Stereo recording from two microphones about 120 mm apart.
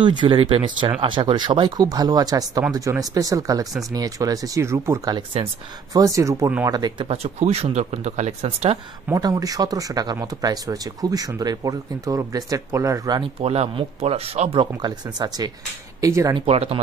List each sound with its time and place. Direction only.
0.0 s speech: 40° right (ahead or behind); by 5.1 s 25° right (ahead or behind)
5.1 s speech: 50° right (ahead or behind)
5.9 s speech: 25° right (ahead or behind)
7.2 s speech: 65° right (ahead or behind)
9.1 s speech: 30° right (ahead or behind)
13.2 s speech: 60° right (ahead or behind)
14.8 s speech: 35° right (ahead or behind)
16.3 s speech: 55° right (ahead or behind)